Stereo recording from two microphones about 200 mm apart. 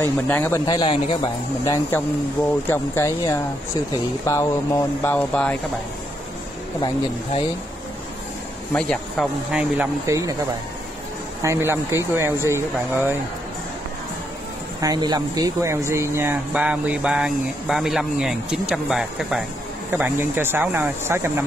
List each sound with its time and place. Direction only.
0.0 s speech: 10° left (ahead or behind)
0.7 s speech: 25° left (ahead or behind)
2.7 s speech: 10° left (ahead or behind)
8.7 s speech: 5° left (ahead or behind); by 10.3 s 15° right (ahead or behind)
11.4 s speech: 15° right (ahead or behind)
14.8 s speech: 20° right (ahead or behind)